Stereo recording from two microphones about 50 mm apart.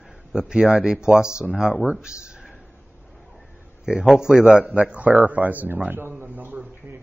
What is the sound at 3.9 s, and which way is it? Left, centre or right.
Speech, centre.